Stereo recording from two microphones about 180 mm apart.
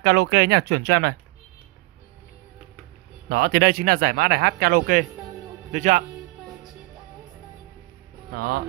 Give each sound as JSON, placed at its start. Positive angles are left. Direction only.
{"t": 0.0, "sound": "speech", "side_deg": -65}
{"t": 3.3, "sound": "a man's voice", "side_deg": -55}
{"t": 8.4, "sound": "speech", "side_deg": -55}